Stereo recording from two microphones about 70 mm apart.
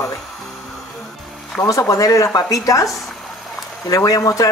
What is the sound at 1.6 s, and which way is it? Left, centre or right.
Speech, left.